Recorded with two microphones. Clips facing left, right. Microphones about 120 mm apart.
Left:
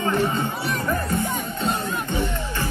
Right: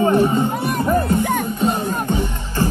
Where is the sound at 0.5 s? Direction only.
55° right (ahead or behind).